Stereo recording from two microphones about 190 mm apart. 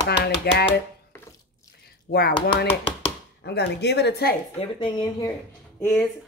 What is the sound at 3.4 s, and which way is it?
Speech, 60° left (ahead or behind).